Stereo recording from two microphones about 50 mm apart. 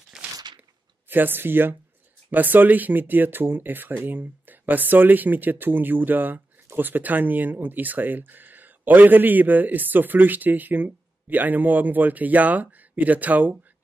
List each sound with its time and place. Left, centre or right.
0.1 s crunch: centre
1.0 s speech: right